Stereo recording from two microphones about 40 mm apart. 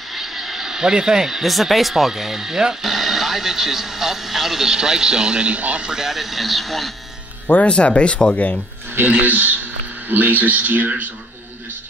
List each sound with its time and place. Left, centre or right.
0.1 s speech: centre; by 5.9 s right
5.9 s speech: centre
6.1 s speech: centre
7.6 s speech: left
9.0 s a man's voice: right